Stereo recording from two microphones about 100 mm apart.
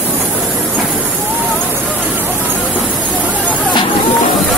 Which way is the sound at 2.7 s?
15° right (ahead or behind).